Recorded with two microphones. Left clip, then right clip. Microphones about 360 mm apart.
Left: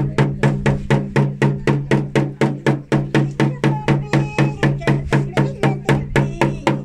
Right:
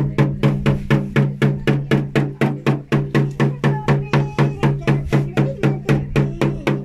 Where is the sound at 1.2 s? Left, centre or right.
Centre.